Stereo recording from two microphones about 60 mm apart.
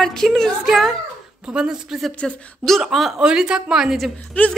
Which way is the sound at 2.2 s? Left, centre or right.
Centre.